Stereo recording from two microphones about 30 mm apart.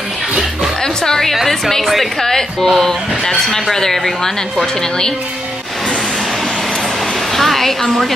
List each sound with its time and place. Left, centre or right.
1.0 s speech: left
1.3 s a woman's voice: centre
2.1 s a woman's voice: centre
7.3 s speech: centre